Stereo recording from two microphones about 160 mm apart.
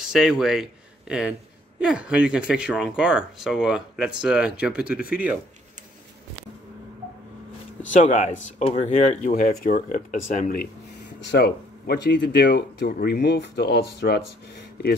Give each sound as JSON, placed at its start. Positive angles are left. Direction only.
{"t": 0.0, "sound": "speech", "side_deg": -5}
{"t": 7.9, "sound": "speech", "side_deg": 50}
{"t": 11.1, "sound": "speech", "side_deg": 90}